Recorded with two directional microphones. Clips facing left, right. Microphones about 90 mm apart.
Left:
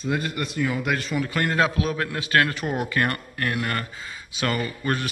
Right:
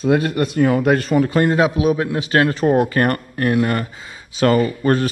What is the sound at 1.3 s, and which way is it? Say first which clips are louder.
A man's voice: right 7 dB; 25° right (ahead or behind).